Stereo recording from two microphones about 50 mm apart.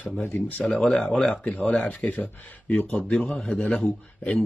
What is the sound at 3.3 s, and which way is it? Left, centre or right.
Speech, centre.